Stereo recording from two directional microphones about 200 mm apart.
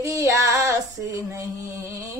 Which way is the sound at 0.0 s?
15° right (ahead or behind).